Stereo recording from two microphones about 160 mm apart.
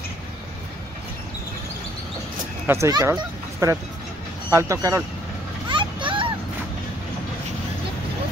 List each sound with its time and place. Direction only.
2.6 s speech: 15° right (ahead or behind)
5.7 s vehicle: 30° right (ahead or behind)